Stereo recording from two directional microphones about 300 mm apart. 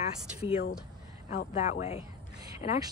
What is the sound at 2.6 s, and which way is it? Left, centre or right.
Speech, left.